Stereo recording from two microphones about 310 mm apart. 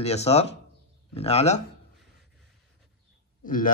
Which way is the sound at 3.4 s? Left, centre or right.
Left.